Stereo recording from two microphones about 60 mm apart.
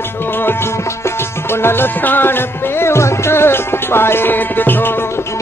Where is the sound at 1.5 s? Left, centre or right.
Left.